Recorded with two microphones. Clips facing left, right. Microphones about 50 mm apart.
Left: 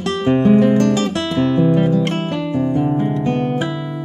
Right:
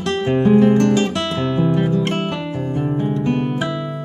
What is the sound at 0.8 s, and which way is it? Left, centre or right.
Guitar, right.